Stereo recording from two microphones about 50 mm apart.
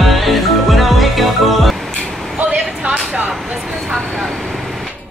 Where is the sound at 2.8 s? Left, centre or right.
Right.